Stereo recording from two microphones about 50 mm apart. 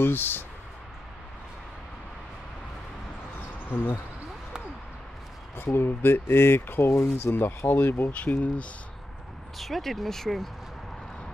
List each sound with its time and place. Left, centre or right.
0.0 s speech: left
3.7 s speech: left
5.9 s speech: left
6.9 s speech: left
7.3 s speech: left
8.1 s speech: left
9.6 s speech: centre